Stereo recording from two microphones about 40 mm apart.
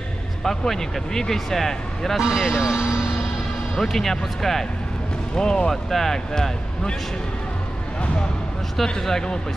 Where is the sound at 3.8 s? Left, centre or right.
Centre.